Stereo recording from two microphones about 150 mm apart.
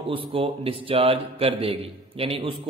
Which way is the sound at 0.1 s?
35° right (ahead or behind).